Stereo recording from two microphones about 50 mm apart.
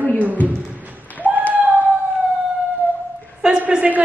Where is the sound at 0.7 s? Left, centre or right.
Right.